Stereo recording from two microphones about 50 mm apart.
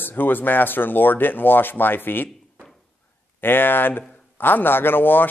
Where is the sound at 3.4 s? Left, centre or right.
Left.